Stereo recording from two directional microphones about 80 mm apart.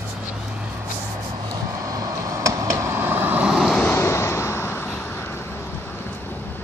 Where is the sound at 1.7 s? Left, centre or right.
Right.